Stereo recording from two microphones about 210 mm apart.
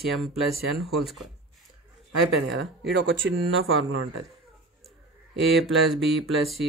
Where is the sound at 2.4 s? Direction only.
55° right (ahead or behind).